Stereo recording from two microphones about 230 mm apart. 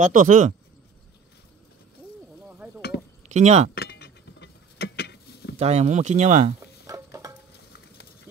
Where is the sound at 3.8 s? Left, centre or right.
Left.